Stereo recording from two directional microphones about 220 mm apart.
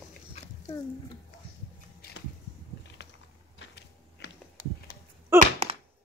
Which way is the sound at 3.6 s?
55° left (ahead or behind).